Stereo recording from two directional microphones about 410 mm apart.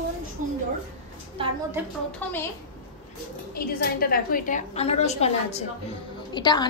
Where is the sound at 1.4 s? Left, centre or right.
Centre.